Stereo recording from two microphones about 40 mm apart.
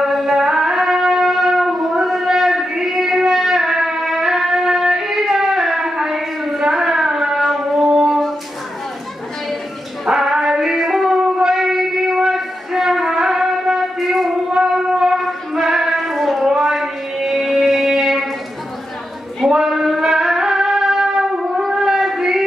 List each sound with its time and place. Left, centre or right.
0.0 s music: centre
6.6 s a sound: centre
10.0 s music: centre
11.6 s a sound: centre
12.4 s music: centre
13.9 s a sound: centre
14.5 s music: centre
15.1 s female singing: centre
16.4 s music: centre
19.4 s music: centre